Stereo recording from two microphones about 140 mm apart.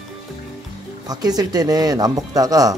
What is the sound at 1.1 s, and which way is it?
Speech, 30° right (ahead or behind).